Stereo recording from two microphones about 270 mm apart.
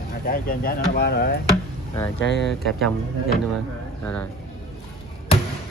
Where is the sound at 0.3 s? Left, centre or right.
Left.